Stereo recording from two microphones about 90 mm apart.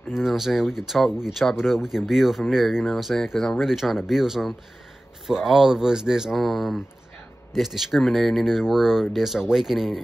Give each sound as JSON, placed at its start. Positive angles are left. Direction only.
{"t": 0.1, "sound": "speech", "side_deg": -5}